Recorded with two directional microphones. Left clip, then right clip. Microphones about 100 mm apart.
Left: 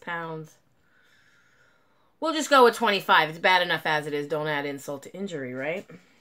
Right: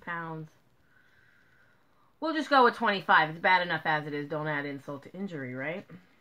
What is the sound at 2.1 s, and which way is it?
Speech, 25° left (ahead or behind).